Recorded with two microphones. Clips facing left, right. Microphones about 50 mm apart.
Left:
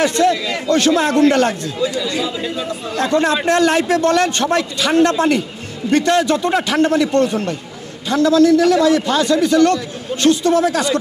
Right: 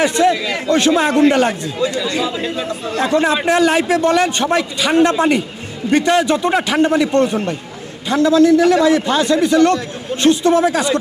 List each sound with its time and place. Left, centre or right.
0.0 s a man's voice: centre
2.1 s a man's voice: right
3.0 s a man's voice: centre